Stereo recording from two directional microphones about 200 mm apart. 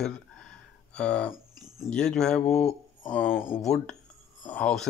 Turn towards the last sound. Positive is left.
turn(degrees=5)  # may be behind; listen again after turning